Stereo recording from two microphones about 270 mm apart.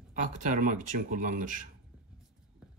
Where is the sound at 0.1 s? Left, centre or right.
Right.